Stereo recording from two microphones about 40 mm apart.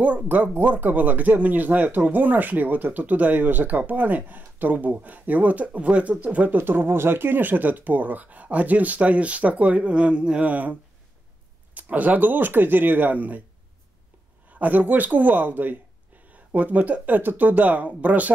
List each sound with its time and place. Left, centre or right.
0.0 s speech: right
6.5 s speech: right
10.4 s speech: right
14.5 s speech: right